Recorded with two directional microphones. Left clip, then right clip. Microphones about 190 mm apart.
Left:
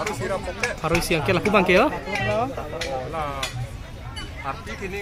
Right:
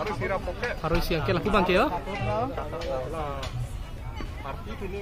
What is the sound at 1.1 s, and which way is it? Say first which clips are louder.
Speech: left 5 dB; 20° left (ahead or behind).